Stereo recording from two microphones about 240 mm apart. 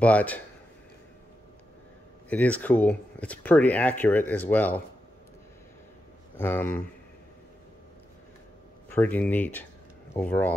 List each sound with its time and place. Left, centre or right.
0.0 s speech: centre
2.2 s speech: centre
6.3 s speech: centre
8.8 s speech: centre